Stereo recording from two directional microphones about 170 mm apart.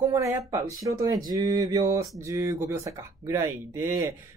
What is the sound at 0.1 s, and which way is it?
Speech, 20° right (ahead or behind).